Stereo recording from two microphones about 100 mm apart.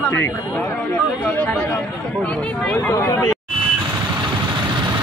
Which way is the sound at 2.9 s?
30° left (ahead or behind).